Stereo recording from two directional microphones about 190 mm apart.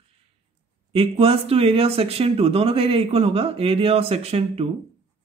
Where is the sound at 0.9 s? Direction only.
30° right (ahead or behind).